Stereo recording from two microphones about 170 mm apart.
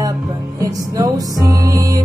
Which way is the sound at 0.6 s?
20° right (ahead or behind).